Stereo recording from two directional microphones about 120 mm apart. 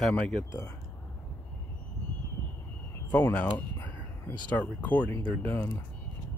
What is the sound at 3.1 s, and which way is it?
Speech, 10° left (ahead or behind).